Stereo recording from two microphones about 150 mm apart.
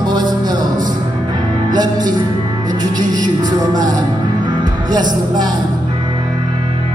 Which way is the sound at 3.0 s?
60° right (ahead or behind).